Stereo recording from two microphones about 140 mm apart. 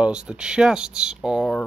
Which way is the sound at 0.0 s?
5° right (ahead or behind).